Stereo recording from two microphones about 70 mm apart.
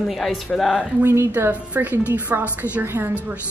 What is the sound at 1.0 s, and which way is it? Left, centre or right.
Speech, right.